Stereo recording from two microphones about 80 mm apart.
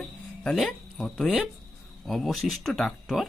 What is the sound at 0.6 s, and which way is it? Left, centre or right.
Speech, centre.